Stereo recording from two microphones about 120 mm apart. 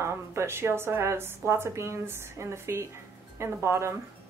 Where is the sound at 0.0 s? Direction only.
20° right (ahead or behind).